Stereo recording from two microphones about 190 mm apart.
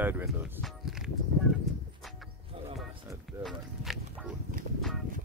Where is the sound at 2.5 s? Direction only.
30° right (ahead or behind).